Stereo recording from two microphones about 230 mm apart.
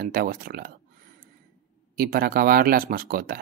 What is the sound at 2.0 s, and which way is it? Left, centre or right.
Speech, right.